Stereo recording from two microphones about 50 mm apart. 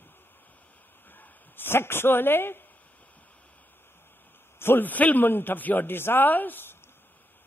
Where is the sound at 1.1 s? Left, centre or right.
Left.